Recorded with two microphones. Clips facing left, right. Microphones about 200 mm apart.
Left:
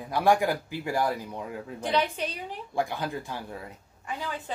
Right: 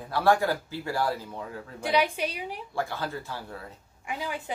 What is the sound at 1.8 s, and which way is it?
Speech, 10° right (ahead or behind).